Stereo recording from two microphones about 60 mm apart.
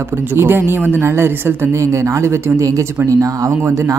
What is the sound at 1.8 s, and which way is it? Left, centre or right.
Speech, right.